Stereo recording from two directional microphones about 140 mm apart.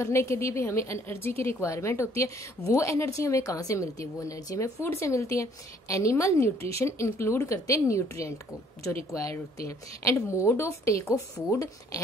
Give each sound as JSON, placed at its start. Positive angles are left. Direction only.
{"t": 0.0, "sound": "a woman's voice", "side_deg": 20}
{"t": 9.7, "sound": "a woman's voice", "side_deg": 20}